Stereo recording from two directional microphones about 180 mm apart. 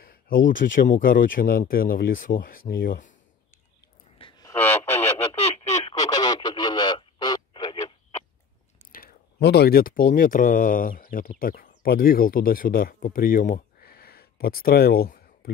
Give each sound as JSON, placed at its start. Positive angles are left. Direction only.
{"t": 0.6, "sound": "speech", "side_deg": 55}
{"t": 4.2, "sound": "radio", "side_deg": 25}
{"t": 5.3, "sound": "a sound", "side_deg": 35}
{"t": 5.9, "sound": "radio", "side_deg": 20}
{"t": 8.9, "sound": "speech", "side_deg": 60}